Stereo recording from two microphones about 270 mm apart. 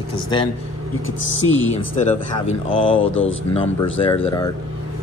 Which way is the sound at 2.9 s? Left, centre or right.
Left.